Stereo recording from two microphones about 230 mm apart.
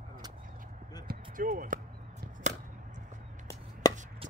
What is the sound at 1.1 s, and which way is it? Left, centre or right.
Basketball bounce, right.